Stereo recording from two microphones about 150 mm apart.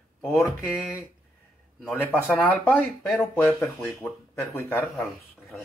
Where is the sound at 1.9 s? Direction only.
15° left (ahead or behind).